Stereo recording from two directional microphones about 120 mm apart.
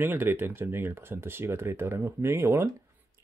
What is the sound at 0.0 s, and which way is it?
Speech, 15° right (ahead or behind).